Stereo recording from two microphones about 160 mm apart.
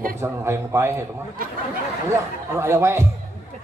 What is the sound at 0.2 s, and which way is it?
Speech, 15° right (ahead or behind).